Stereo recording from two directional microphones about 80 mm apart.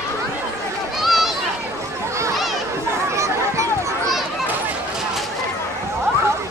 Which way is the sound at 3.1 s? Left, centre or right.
Right.